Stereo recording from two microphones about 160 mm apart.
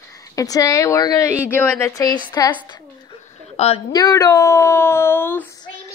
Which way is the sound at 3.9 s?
25° left (ahead or behind).